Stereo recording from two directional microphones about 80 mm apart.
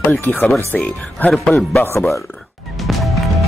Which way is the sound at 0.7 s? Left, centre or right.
Centre.